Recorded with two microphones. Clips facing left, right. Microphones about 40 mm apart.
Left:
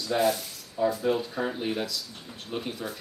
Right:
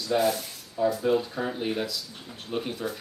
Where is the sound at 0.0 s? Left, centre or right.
Centre.